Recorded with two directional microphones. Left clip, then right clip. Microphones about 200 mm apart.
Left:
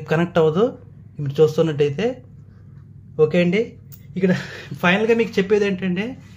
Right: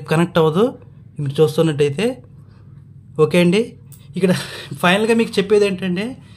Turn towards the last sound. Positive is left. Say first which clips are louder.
# right 4 dB
turn(degrees=-10)  # may be behind; listen again after turning